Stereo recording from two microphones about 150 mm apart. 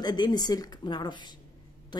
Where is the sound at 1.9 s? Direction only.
30° left (ahead or behind).